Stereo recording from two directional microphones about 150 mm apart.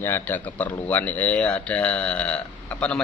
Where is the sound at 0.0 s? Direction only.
15° left (ahead or behind).